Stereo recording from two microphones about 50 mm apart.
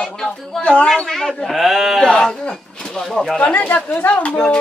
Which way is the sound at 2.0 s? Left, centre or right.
Centre.